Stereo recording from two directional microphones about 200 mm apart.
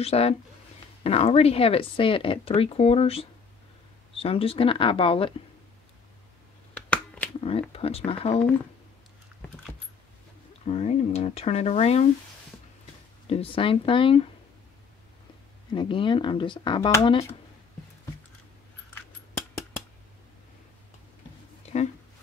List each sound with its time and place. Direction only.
0.0 s speech: 30° left (ahead or behind)
6.7 s finger snapping: 5° left (ahead or behind)
7.3 s speech: 30° left (ahead or behind)
10.7 s speech: 30° left (ahead or behind)
13.3 s speech: 25° left (ahead or behind)
15.7 s speech: 25° left (ahead or behind)
18.9 s a sound: 10° left (ahead or behind)